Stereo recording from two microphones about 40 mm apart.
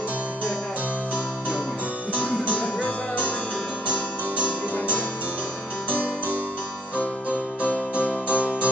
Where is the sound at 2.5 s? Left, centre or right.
Left.